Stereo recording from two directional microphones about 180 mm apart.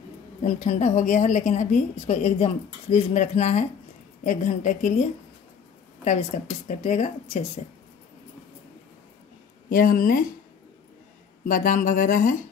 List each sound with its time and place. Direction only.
0.4 s a woman's voice: 40° left (ahead or behind)
6.0 s a woman's voice: 40° left (ahead or behind)
9.7 s speech: 50° left (ahead or behind)
11.4 s speech: 50° left (ahead or behind)